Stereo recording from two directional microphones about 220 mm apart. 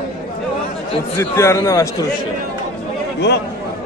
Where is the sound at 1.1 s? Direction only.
10° left (ahead or behind).